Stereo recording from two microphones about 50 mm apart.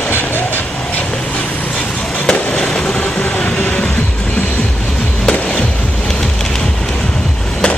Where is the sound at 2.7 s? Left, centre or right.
Left.